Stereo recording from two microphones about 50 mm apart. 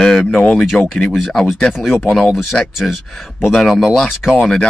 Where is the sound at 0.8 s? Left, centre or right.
Left.